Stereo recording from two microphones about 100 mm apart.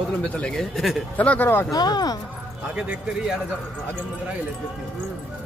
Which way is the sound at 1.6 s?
40° left (ahead or behind).